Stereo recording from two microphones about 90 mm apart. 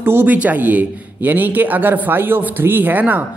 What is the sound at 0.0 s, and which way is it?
A man's voice, 25° right (ahead or behind).